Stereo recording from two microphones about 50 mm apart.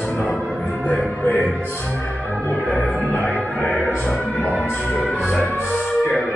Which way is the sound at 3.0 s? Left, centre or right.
Left.